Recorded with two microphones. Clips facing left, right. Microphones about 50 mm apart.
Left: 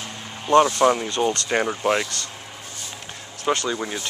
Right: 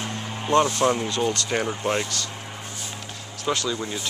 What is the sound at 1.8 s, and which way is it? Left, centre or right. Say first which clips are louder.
Speech: left 3 dB; left.